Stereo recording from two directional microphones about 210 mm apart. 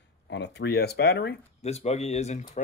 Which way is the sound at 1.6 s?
30° left (ahead or behind).